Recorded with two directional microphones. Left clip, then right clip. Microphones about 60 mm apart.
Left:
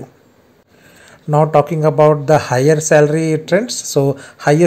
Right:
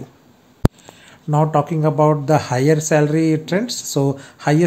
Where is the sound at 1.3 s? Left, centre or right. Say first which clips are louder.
Left 5 dB; left.